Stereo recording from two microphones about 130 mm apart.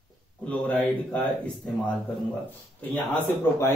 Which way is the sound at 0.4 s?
10° left (ahead or behind).